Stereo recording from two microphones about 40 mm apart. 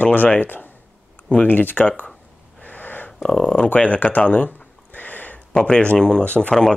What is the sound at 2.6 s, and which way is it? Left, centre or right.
Wheeze, left.